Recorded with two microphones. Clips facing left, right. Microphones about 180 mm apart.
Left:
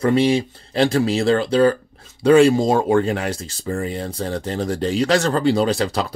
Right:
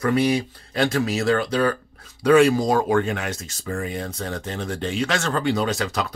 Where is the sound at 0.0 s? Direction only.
25° left (ahead or behind).